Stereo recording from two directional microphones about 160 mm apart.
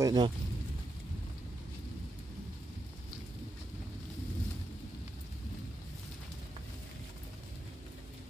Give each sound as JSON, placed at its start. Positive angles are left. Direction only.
{"t": 0.0, "sound": "speech", "side_deg": -25}